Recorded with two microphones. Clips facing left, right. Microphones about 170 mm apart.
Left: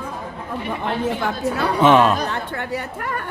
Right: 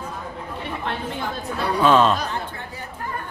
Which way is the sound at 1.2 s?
75° left (ahead or behind).